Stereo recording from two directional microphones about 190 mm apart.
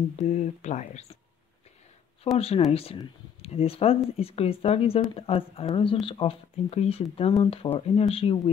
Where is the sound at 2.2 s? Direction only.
30° left (ahead or behind).